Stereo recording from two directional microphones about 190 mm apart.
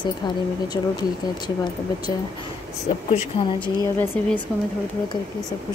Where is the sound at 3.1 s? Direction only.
25° left (ahead or behind).